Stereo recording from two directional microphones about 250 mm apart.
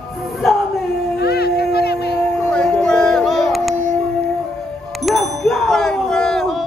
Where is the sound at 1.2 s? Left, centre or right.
Left.